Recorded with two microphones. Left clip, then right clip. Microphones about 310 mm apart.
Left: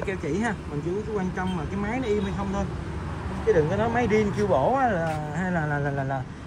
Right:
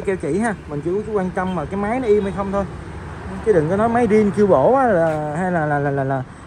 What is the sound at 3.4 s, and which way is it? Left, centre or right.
Speech, centre.